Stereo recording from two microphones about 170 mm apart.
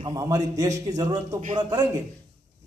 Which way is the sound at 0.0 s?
20° right (ahead or behind).